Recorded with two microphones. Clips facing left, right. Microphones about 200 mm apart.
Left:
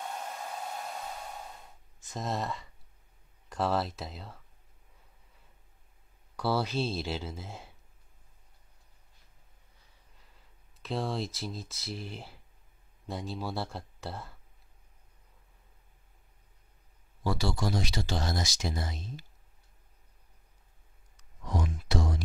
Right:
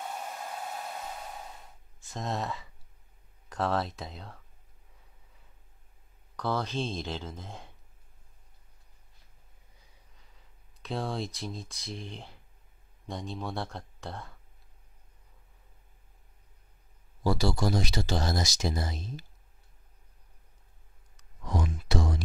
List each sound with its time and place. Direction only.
0.0 s hair dryer: 5° right (ahead or behind)
2.1 s speech: centre (ahead or behind)
6.3 s speech: 10° left (ahead or behind)
10.8 s speech: centre (ahead or behind)
17.2 s speech: 35° right (ahead or behind)
21.5 s a sound: 90° right